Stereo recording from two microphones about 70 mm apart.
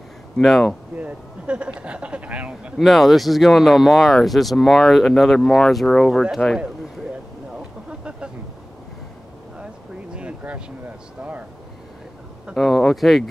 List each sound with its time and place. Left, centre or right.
0.4 s speech: centre
0.9 s speech: centre
2.8 s speech: centre
7.5 s a sound: centre
10.1 s a sound: centre
12.5 s speech: centre